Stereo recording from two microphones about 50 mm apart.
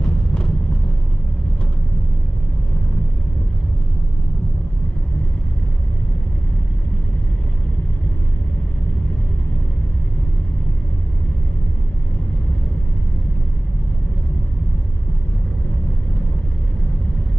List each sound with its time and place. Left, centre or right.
0.0 s vehicle: left